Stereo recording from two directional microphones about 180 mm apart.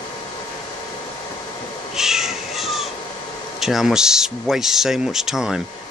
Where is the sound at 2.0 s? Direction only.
5° right (ahead or behind).